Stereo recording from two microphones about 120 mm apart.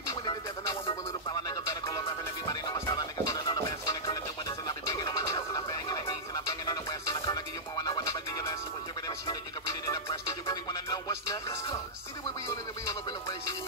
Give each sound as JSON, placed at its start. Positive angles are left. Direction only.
{"t": 0.1, "sound": "music", "side_deg": 35}
{"t": 4.1, "sound": "a sound", "side_deg": 30}
{"t": 9.3, "sound": "music", "side_deg": 30}